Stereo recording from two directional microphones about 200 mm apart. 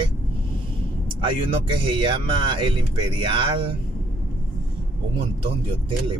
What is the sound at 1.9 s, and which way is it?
Speech, 25° right (ahead or behind).